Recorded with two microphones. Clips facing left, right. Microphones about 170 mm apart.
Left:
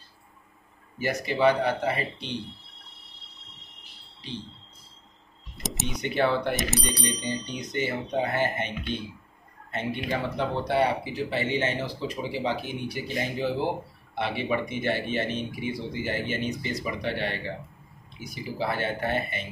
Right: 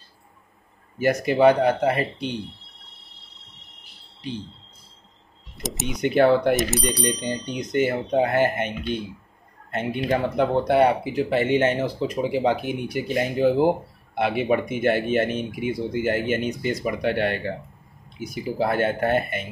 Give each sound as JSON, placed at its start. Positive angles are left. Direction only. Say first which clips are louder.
{"t": 0.9, "sound": "speech", "louder": "right 7 dB", "side_deg": -50}
{"t": 5.6, "sound": "speech", "louder": "right 3 dB", "side_deg": 0}
{"t": 6.1, "sound": "speech", "louder": "right 8 dB", "side_deg": -45}
{"t": 6.5, "sound": "speech", "louder": "right 6 dB", "side_deg": 0}
{"t": 7.4, "sound": "speech", "louder": "right 7 dB", "side_deg": -45}